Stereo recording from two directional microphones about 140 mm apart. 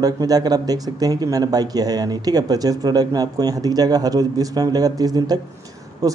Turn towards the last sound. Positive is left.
turn(degrees=-25)  # may be behind; listen again after turning